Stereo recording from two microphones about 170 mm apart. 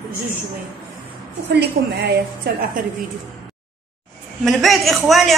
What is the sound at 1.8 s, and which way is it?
Speech, 75° right (ahead or behind).